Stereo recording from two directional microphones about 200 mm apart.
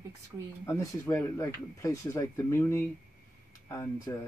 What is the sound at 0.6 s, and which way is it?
Speech, 15° left (ahead or behind).